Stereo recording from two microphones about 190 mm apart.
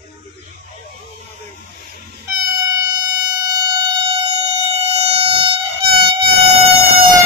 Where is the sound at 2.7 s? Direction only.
20° right (ahead or behind).